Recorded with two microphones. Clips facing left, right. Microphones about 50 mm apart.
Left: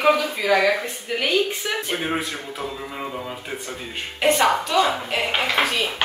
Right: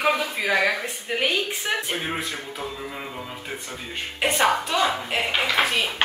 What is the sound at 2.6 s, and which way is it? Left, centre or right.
A woman's voice, centre.